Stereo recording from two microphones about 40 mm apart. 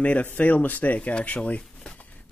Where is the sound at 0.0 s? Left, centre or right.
Left.